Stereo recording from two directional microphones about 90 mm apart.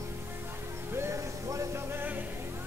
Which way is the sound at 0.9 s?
30° right (ahead or behind).